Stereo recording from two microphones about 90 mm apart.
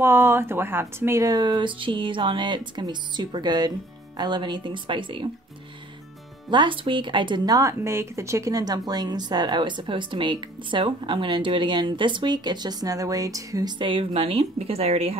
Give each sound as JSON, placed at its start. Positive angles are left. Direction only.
{"t": 0.0, "sound": "speech", "side_deg": -30}
{"t": 1.2, "sound": "speech", "side_deg": -50}
{"t": 6.5, "sound": "speech", "side_deg": -65}
{"t": 7.5, "sound": "speech", "side_deg": -35}
{"t": 13.7, "sound": "a woman's voice", "side_deg": -70}